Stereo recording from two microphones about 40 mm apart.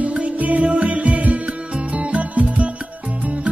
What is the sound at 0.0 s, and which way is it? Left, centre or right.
Music, right.